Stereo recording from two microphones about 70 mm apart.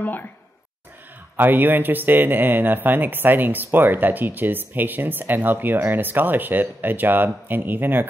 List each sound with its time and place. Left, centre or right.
0.0 s speech: left
1.3 s speech: right